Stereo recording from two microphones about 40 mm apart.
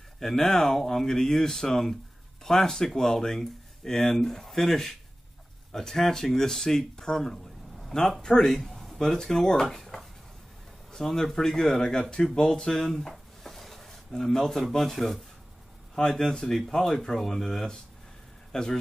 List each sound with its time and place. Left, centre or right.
0.2 s speech: centre
8.5 s speech: centre
10.9 s speech: centre
12.4 s a sound: centre
14.2 s speech: centre
15.9 s a man's voice: centre